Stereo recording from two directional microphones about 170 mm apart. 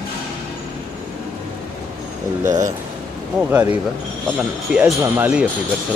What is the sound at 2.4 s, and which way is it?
Speech, 50° right (ahead or behind).